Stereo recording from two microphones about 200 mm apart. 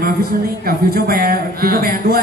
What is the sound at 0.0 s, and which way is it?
Music, 50° right (ahead or behind).